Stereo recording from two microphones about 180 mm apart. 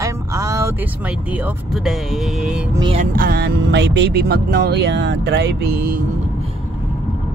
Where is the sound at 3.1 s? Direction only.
55° right (ahead or behind).